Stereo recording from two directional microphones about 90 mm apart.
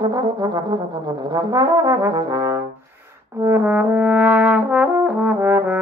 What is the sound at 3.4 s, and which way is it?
Brass instrument, 25° right (ahead or behind).